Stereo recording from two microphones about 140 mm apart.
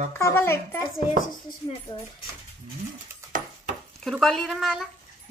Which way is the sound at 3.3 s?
75° right (ahead or behind).